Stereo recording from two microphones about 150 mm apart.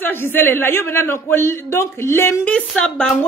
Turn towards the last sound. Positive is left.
turn(degrees=5)  # may be behind; listen again after turning